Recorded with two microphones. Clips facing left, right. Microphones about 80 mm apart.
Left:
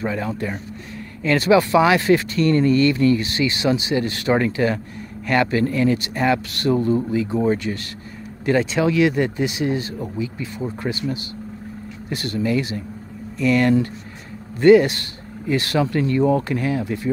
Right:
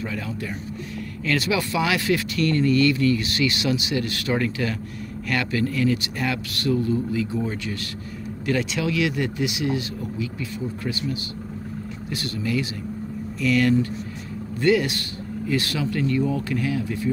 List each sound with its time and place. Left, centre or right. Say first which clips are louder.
0.0 s speech: left 6 dB; left
0.3 s speech: left 5 dB; left
0.9 s speech: left 5 dB; left